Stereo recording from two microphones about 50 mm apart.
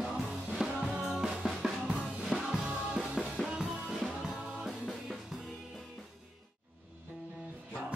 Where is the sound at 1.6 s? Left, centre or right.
Centre.